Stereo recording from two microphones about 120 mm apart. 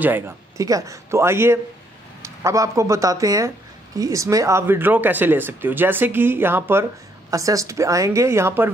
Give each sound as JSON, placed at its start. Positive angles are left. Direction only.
{"t": 0.6, "sound": "speech", "side_deg": -30}